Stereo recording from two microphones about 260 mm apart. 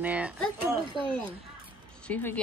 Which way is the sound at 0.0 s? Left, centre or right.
Centre.